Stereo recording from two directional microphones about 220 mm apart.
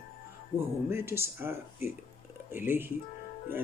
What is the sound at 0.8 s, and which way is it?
A man's voice, 10° right (ahead or behind).